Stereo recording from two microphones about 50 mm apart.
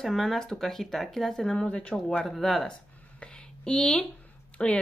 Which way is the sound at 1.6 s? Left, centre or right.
Left.